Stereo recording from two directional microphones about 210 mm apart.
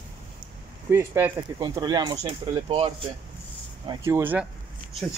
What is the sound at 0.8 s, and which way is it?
Speech, 10° right (ahead or behind).